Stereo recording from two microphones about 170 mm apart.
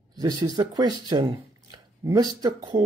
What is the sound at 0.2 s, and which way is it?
Speech, 25° right (ahead or behind).